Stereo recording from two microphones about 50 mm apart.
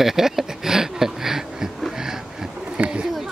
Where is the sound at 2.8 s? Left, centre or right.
Right.